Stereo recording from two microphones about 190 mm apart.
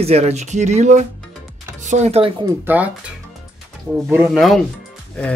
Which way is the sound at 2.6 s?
10° right (ahead or behind).